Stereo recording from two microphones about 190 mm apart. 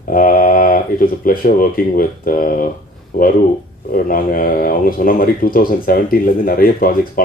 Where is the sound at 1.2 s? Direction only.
50° left (ahead or behind).